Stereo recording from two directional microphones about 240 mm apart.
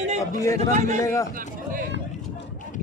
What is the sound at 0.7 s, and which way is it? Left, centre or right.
Speech, right.